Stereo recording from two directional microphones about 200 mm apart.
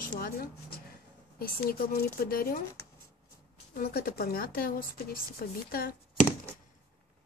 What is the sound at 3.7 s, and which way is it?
Speech, 50° left (ahead or behind).